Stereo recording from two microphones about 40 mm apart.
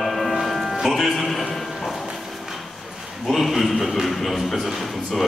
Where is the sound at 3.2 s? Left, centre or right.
Centre.